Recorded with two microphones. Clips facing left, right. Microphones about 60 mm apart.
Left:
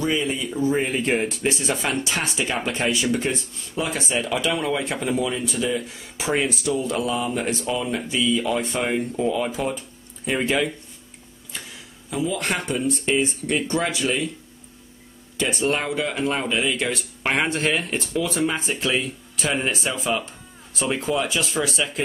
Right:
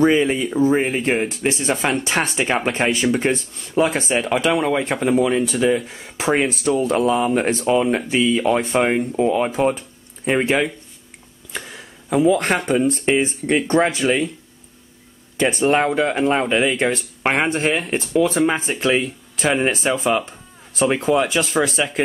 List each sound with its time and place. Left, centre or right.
0.0 s speech: right
0.6 s speech: right
12.1 s speech: right
15.3 s speech: right